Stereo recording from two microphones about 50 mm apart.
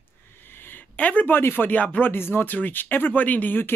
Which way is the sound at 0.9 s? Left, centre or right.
Left.